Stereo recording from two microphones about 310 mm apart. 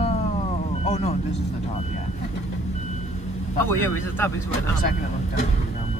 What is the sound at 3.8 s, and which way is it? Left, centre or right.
Speech, centre.